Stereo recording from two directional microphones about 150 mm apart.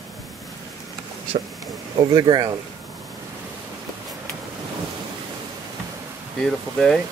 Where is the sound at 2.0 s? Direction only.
25° right (ahead or behind).